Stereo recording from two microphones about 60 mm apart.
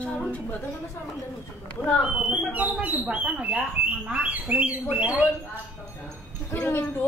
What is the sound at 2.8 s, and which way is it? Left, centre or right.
Speech, right.